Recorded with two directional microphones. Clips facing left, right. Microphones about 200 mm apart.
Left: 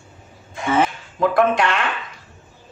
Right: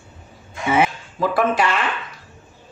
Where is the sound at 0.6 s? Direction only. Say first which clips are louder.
Even; 10° right (ahead or behind).